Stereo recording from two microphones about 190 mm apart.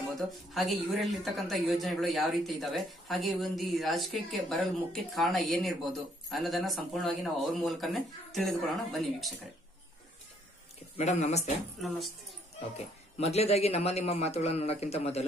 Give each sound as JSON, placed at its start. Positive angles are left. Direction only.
{"t": 0.2, "sound": "speech", "side_deg": 0}
{"t": 11.0, "sound": "a man's voice", "side_deg": 35}
{"t": 11.8, "sound": "speech", "side_deg": 0}
{"t": 12.7, "sound": "a man's voice", "side_deg": 35}